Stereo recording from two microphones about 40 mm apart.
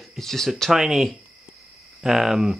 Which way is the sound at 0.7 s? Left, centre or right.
Centre.